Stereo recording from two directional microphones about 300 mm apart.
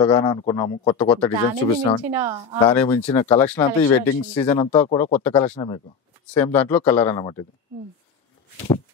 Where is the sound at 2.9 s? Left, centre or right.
Centre.